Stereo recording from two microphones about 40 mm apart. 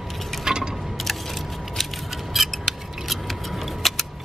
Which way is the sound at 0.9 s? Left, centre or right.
Centre.